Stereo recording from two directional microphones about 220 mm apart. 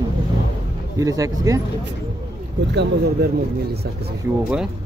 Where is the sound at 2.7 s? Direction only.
50° right (ahead or behind).